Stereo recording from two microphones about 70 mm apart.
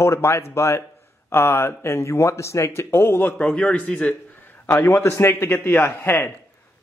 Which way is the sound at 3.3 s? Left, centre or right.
Centre.